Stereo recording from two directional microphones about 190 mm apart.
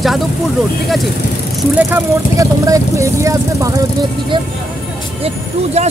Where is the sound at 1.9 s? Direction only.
15° right (ahead or behind).